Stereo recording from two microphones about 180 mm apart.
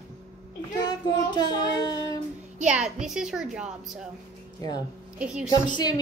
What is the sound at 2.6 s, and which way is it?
A woman's voice, 5° right (ahead or behind).